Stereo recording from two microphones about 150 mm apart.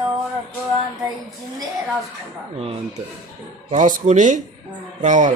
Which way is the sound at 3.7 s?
55° right (ahead or behind).